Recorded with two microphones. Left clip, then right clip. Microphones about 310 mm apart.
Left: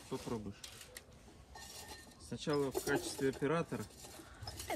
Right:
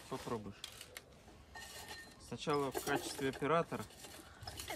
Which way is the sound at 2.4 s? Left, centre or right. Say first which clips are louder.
Even; centre.